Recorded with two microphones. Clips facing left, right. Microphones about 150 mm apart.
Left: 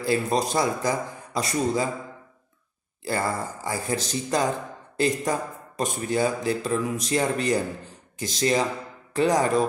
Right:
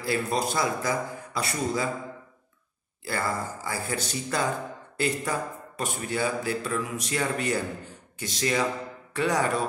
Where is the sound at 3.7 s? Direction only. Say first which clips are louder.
Left 5 dB; 35° left (ahead or behind).